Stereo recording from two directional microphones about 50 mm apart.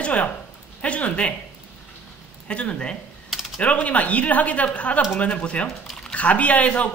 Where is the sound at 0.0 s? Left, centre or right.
Left.